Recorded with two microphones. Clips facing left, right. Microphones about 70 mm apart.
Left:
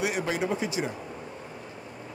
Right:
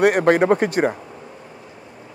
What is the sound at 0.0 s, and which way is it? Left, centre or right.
Speech, right.